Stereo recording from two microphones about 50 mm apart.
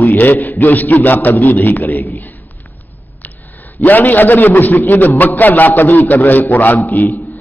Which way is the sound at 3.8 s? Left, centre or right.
Left.